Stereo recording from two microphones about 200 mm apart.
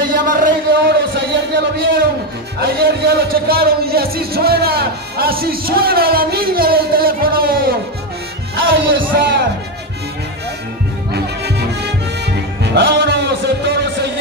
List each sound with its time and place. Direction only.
0.2 s a sound: 45° right (ahead or behind)
1.1 s a sound: 60° right (ahead or behind)
2.6 s a man's voice: 50° right (ahead or behind)
8.5 s music: 75° right (ahead or behind)
9.0 s music: 50° right (ahead or behind)
11.1 s music: 55° right (ahead or behind)